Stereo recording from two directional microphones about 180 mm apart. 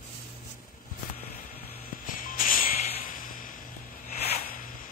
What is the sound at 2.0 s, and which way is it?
Music, 50° left (ahead or behind).